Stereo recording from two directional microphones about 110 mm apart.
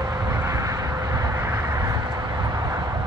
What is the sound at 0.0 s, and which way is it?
Vehicle, 35° right (ahead or behind).